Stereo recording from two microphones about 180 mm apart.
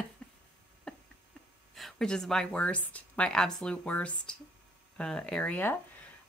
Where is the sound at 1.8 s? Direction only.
Centre (ahead or behind).